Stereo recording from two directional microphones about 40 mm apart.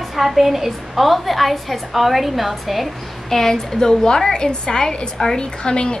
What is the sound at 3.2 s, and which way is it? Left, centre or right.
A woman's voice, centre.